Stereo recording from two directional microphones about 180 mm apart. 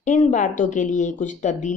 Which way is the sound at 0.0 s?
45° left (ahead or behind).